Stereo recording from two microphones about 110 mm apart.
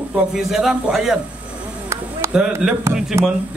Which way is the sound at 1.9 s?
25° right (ahead or behind).